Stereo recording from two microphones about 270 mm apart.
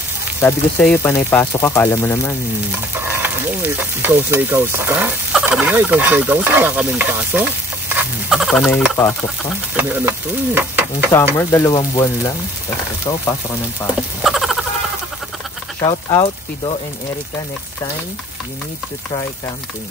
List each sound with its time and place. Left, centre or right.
0.4 s speech: centre
3.1 s speech: centre
7.9 s fowl: centre
9.8 s speech: centre
11.3 s speech: centre
14.2 s frog: centre
15.8 s speech: centre